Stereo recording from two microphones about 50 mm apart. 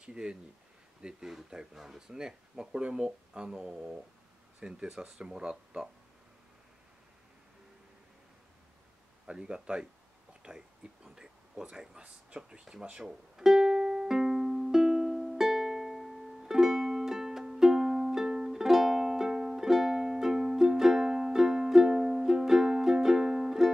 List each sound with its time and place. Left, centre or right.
0.0 s speech: centre
9.2 s speech: centre
10.4 s a sound: centre
12.0 s speech: centre
13.0 s music: centre